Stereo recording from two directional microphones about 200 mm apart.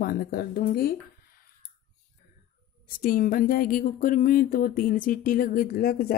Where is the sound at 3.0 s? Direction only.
45° left (ahead or behind).